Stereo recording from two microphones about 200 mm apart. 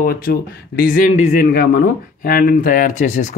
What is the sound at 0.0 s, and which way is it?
A man's voice, 45° left (ahead or behind).